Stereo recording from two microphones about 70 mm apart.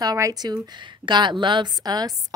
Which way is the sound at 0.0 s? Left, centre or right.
Right.